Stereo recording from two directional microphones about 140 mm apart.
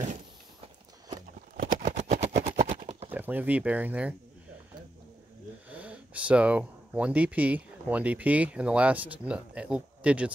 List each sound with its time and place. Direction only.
1.6 s a sound: 60° right (ahead or behind)
2.4 s vehicle: 45° right (ahead or behind)
3.1 s speech: 10° right (ahead or behind)
5.7 s speech: 10° right (ahead or behind)